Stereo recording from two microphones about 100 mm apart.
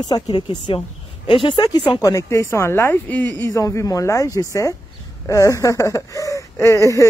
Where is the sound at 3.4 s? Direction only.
30° left (ahead or behind).